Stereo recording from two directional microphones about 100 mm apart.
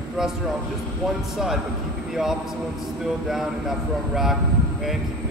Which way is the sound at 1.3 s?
5° right (ahead or behind).